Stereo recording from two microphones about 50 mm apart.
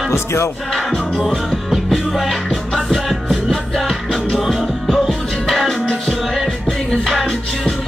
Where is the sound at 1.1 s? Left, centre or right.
Centre.